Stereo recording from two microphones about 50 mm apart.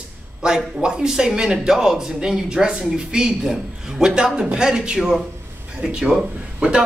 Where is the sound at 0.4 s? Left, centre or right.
Centre.